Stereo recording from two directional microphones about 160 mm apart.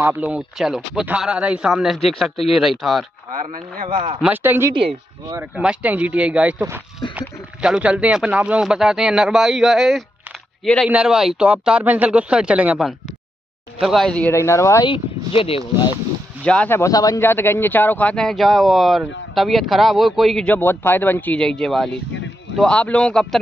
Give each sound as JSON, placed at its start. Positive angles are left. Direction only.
{"t": 0.1, "sound": "speech", "side_deg": -5}
{"t": 3.3, "sound": "speech", "side_deg": -55}
{"t": 4.2, "sound": "a man's voice", "side_deg": -10}
{"t": 14.9, "sound": "speech", "side_deg": 35}
{"t": 16.4, "sound": "a man's voice", "side_deg": 10}